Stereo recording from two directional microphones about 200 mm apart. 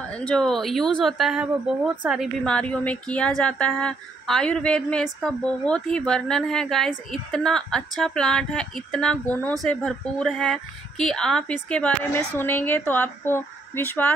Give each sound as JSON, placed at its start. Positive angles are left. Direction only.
{"t": 0.1, "sound": "a woman's voice", "side_deg": 5}